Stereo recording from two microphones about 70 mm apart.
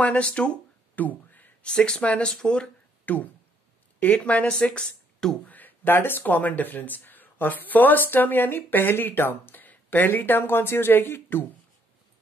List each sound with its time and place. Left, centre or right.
0.0 s a sound: centre
1.7 s speech: centre
3.1 s speech: left; by 5.4 s centre
5.5 s speech: left